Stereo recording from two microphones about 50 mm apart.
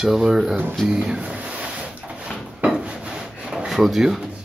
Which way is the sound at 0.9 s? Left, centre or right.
Right.